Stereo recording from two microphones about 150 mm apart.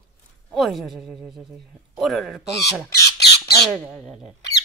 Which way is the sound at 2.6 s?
90° left.